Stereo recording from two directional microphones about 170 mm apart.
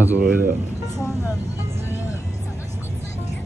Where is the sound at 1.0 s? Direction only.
5° left (ahead or behind).